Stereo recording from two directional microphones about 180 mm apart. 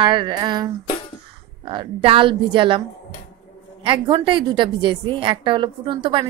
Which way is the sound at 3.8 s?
30° right (ahead or behind).